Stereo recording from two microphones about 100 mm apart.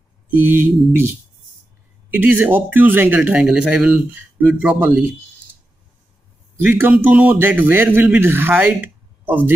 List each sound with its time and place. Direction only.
0.3 s mantra: 20° right (ahead or behind)
2.0 s speech: 20° right (ahead or behind)
4.1 s speech: 15° right (ahead or behind)
6.6 s speech: 20° right (ahead or behind)
8.2 s mantra: 20° right (ahead or behind)